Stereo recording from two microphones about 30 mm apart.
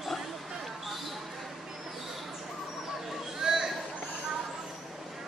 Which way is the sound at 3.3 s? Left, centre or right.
Centre.